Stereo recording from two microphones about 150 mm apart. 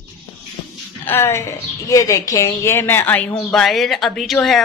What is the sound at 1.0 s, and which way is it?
A woman's voice, 15° left (ahead or behind).